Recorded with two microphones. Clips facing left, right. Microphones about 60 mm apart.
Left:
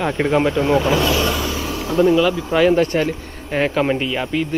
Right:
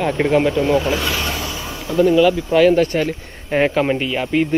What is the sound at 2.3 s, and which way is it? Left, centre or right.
Speech, centre.